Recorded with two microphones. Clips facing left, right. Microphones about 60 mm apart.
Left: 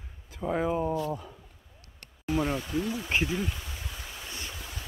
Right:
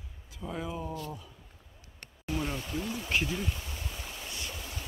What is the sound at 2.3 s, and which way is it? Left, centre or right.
Speech, left.